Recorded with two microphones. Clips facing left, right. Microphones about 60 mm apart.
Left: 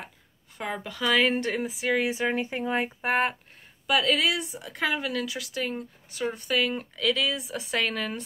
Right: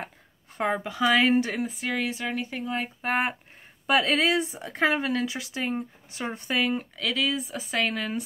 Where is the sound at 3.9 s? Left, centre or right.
Right.